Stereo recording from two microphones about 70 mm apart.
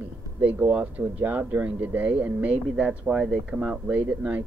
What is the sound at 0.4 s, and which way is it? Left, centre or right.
Speech, right.